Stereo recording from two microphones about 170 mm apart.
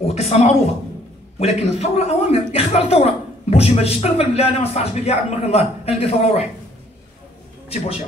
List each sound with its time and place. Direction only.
0.0 s speech: 40° left (ahead or behind)
7.7 s speech: 40° left (ahead or behind)